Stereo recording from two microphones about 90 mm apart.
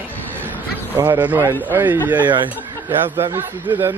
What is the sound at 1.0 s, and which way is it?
Speech, 25° right (ahead or behind).